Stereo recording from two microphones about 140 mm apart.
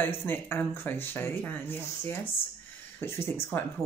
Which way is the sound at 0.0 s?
15° left (ahead or behind).